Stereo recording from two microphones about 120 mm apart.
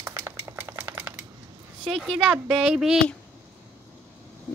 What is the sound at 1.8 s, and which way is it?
Speech, centre (ahead or behind).